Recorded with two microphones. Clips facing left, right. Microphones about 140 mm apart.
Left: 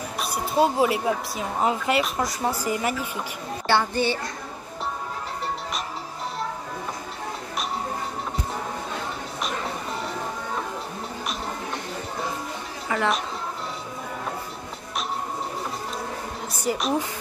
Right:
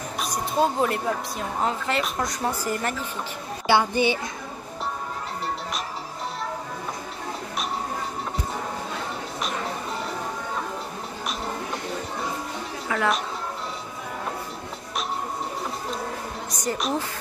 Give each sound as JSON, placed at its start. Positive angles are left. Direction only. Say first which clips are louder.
{"t": 0.2, "sound": "speech", "louder": "left 2 dB", "side_deg": 5}
{"t": 3.6, "sound": "a child's voice", "louder": "right 2 dB", "side_deg": -15}
{"t": 12.8, "sound": "speech", "louder": "even", "side_deg": 0}
{"t": 16.4, "sound": "a sound", "louder": "left 2 dB", "side_deg": 0}